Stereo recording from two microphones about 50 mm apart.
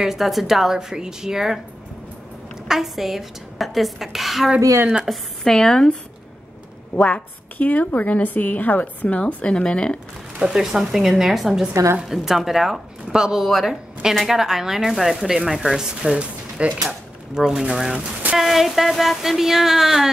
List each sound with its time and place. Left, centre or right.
0.0 s speech: centre
2.7 s a woman's voice: centre
5.4 s speech: centre
7.0 s a woman's voice: left
7.5 s a woman's voice: left; by 9.9 s centre
10.4 s speech: centre
13.5 s a woman's voice: centre
16.2 s speech: right
17.3 s a woman's voice: centre